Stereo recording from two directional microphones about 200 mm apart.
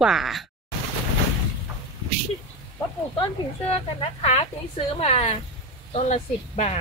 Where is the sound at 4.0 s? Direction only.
35° left (ahead or behind).